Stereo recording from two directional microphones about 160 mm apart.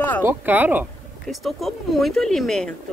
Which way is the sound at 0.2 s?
15° right (ahead or behind).